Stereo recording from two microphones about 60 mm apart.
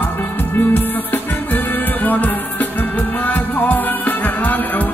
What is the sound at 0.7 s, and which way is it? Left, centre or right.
Music, left.